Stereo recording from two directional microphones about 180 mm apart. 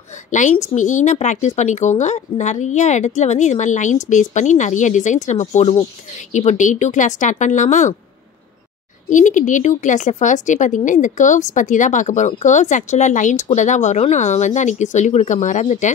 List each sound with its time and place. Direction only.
0.3 s a woman's voice: 45° left (ahead or behind)
9.1 s a woman's voice: 45° left (ahead or behind)